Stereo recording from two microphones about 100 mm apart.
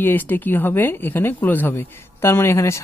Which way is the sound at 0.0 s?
20° left (ahead or behind).